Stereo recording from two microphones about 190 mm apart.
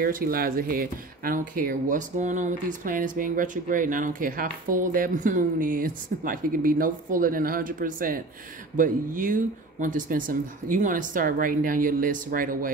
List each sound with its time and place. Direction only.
0.0 s speech: 50° right (ahead or behind)